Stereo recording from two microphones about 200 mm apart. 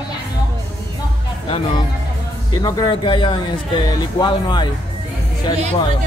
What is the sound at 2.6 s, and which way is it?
Speech, 25° left (ahead or behind).